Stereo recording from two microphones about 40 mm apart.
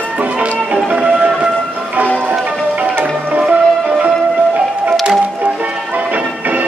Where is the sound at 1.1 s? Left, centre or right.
Right.